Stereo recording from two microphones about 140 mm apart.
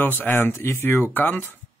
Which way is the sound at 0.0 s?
15° left (ahead or behind).